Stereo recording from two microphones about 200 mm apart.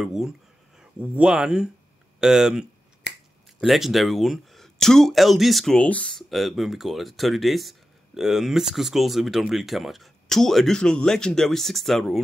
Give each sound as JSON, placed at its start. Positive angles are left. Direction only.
{"t": 0.0, "sound": "a sound", "side_deg": -5}
{"t": 0.9, "sound": "speech", "side_deg": -5}
{"t": 3.1, "sound": "finger snapping", "side_deg": 60}
{"t": 3.6, "sound": "speech", "side_deg": 0}